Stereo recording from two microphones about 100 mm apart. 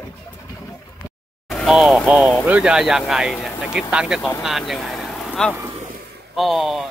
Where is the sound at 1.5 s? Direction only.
Centre (ahead or behind).